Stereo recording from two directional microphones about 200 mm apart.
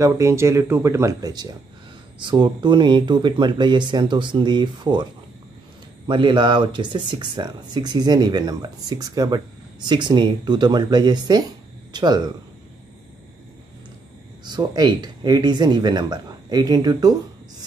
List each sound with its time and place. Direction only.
0.0 s speech: 15° right (ahead or behind)
6.0 s speech: 25° right (ahead or behind)
14.4 s speech: 20° right (ahead or behind)